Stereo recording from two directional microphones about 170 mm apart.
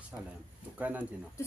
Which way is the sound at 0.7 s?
10° right (ahead or behind).